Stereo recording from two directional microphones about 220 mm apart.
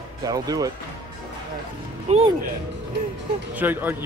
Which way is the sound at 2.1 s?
30° right (ahead or behind).